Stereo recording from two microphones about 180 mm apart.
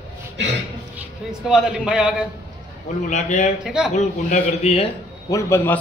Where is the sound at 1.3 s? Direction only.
5° right (ahead or behind).